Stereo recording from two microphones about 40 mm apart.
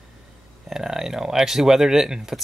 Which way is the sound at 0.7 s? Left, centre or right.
Centre.